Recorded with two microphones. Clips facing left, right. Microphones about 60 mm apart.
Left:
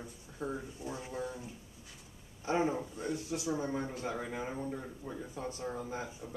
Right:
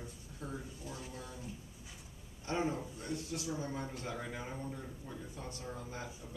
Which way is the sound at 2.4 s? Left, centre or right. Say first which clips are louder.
Left 4 dB; centre.